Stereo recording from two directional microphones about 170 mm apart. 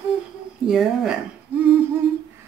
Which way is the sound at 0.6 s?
5° right (ahead or behind).